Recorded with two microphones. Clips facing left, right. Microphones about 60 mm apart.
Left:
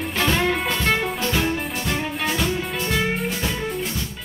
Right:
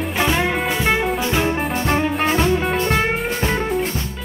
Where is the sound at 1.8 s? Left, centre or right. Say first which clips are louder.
Right 8 dB; right.